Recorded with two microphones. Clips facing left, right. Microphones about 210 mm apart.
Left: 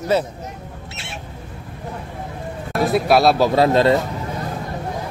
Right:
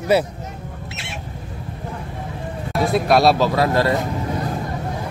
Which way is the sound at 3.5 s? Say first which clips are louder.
Left 3 dB; 25° left (ahead or behind).